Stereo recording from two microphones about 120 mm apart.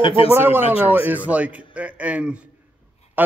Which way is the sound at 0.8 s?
15° right (ahead or behind).